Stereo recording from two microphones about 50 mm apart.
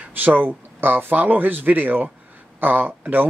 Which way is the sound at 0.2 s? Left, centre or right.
Right.